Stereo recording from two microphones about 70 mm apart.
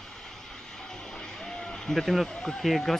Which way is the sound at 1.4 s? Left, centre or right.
Centre.